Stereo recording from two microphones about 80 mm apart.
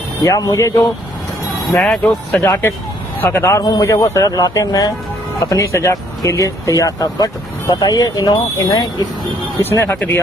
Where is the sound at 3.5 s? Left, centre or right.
Left.